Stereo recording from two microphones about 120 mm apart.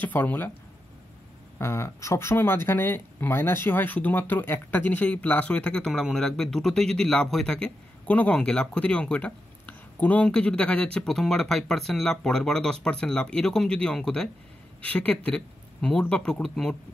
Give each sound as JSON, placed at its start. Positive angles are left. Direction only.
{"t": 0.0, "sound": "speech", "side_deg": 15}
{"t": 1.6, "sound": "speech", "side_deg": 20}